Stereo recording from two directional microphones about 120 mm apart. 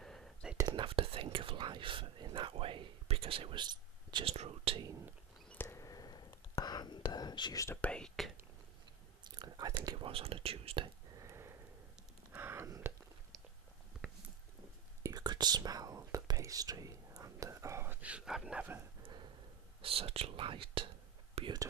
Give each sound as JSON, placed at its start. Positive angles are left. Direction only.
{"t": 0.0, "sound": "whispering", "side_deg": 5}
{"t": 0.7, "sound": "whispering", "side_deg": -45}
{"t": 4.4, "sound": "whispering", "side_deg": -60}
{"t": 5.5, "sound": "whispering", "side_deg": 20}
{"t": 7.6, "sound": "whispering", "side_deg": 15}
{"t": 9.3, "sound": "whispering", "side_deg": -30}
{"t": 9.8, "sound": "whispering", "side_deg": -45}
{"t": 11.1, "sound": "sniff", "side_deg": -25}
{"t": 12.4, "sound": "a sound", "side_deg": -20}
{"t": 15.0, "sound": "whispering", "side_deg": -35}
{"t": 18.0, "sound": "a sound", "side_deg": -5}
{"t": 19.8, "sound": "whispering", "side_deg": -50}
{"t": 21.4, "sound": "whispering", "side_deg": -60}